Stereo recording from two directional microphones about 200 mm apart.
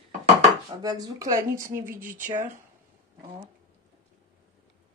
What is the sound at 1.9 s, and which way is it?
Speech, 40° right (ahead or behind).